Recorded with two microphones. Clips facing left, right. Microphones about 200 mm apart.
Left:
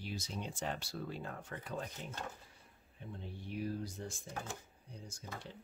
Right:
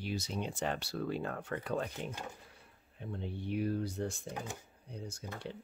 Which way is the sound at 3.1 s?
65° right (ahead or behind).